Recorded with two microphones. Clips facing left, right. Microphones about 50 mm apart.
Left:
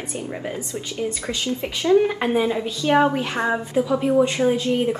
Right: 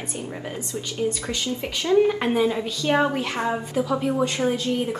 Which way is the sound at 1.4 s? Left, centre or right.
Left.